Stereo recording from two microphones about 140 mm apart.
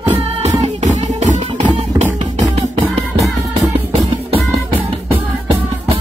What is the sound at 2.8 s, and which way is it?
Music, 20° right (ahead or behind).